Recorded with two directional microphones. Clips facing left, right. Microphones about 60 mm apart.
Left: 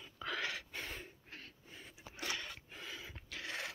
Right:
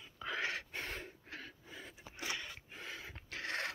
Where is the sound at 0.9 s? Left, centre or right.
Right.